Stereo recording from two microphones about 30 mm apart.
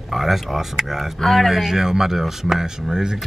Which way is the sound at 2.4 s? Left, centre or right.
Right.